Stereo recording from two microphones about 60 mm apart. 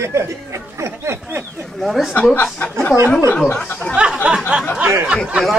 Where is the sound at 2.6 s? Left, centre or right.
Left.